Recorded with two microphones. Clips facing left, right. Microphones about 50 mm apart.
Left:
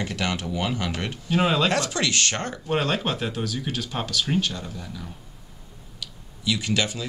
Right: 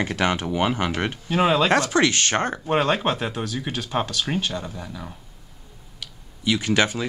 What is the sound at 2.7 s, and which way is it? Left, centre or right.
Speech, centre.